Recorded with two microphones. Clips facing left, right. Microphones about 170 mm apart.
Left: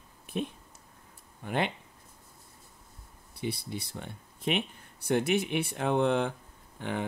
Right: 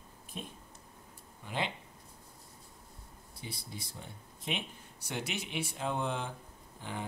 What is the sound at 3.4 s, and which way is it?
Speech, 65° left (ahead or behind).